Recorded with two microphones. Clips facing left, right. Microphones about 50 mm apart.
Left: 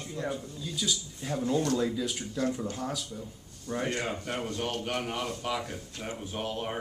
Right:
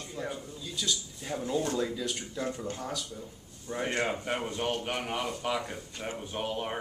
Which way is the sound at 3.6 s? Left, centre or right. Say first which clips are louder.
Right 1 dB; centre.